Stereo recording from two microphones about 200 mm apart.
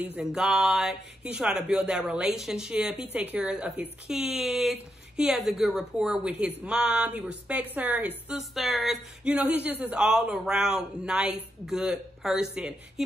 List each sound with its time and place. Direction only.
0.0 s a woman's voice: 5° right (ahead or behind)